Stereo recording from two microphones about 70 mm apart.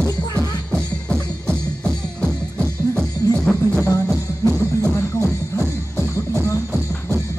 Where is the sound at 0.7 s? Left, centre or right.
Centre.